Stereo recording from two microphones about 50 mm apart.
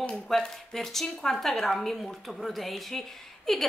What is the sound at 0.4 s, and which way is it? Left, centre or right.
A woman's voice, centre.